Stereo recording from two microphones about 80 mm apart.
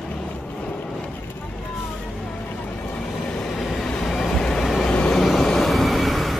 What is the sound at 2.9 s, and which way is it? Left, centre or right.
Train, centre.